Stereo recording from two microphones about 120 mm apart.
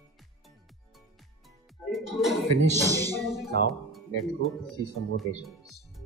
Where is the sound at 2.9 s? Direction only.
30° right (ahead or behind).